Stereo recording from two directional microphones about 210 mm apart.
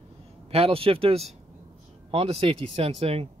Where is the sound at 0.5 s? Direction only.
25° right (ahead or behind).